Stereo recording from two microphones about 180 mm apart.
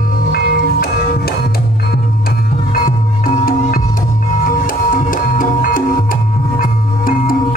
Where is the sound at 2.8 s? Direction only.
50° left (ahead or behind).